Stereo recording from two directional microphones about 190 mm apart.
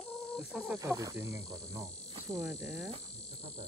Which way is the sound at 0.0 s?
5° left (ahead or behind).